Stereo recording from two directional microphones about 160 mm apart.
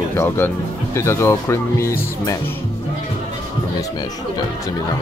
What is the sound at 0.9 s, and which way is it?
Speech, 15° left (ahead or behind).